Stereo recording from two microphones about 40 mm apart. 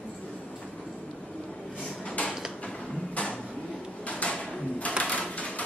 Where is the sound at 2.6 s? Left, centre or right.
Left.